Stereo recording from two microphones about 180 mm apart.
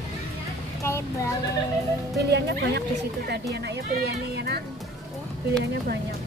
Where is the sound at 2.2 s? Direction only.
65° right (ahead or behind).